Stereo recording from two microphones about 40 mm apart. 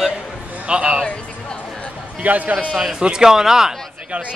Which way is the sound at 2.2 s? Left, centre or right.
Right.